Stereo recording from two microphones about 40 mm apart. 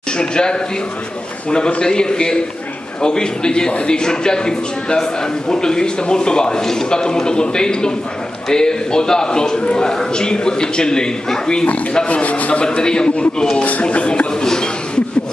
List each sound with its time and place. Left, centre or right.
0.2 s a man's voice: left
12.1 s speech: left
12.6 s a man's voice: left
13.6 s a man's voice: left
14.4 s a sound: centre